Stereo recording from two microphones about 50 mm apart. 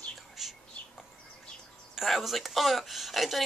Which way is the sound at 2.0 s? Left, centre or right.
Centre.